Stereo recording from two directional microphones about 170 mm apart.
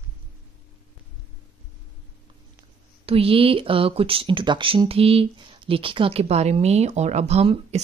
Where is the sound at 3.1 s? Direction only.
35° right (ahead or behind).